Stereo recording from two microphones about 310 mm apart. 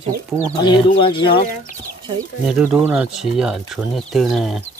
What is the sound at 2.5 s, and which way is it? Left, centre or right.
Speech, centre.